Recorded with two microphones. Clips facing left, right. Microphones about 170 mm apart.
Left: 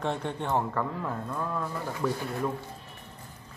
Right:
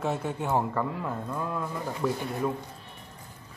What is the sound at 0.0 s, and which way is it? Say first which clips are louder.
A man's voice: right 1 dB; 5° right (ahead or behind).